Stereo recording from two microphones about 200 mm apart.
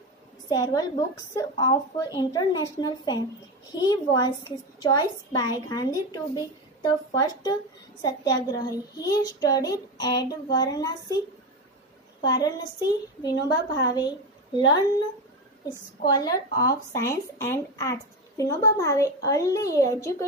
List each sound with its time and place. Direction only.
0.5 s a child's voice: 20° left (ahead or behind)
12.2 s a child's voice: 20° left (ahead or behind)
16.0 s speech: 20° left (ahead or behind)